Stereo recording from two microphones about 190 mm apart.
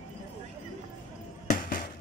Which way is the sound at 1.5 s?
45° left (ahead or behind).